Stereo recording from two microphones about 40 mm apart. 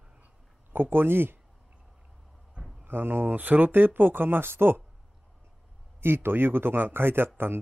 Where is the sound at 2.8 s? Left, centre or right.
Right.